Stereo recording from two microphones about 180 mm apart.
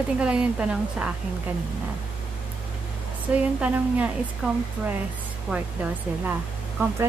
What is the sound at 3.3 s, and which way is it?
A woman's voice, 5° right (ahead or behind).